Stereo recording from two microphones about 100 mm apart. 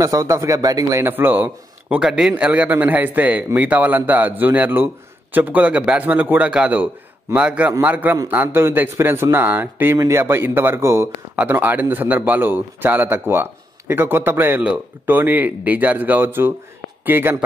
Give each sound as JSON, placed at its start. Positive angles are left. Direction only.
{"t": 0.0, "sound": "a man's voice", "side_deg": -30}